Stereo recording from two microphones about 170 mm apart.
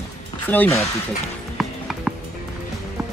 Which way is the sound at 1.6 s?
Centre (ahead or behind).